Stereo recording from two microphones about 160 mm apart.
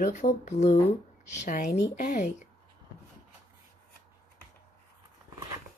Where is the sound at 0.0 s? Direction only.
50° left (ahead or behind).